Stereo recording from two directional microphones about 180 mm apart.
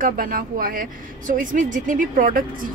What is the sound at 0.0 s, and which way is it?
Speech, 50° right (ahead or behind).